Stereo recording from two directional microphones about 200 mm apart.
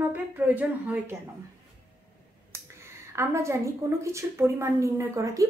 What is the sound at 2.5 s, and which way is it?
Speech, 15° right (ahead or behind).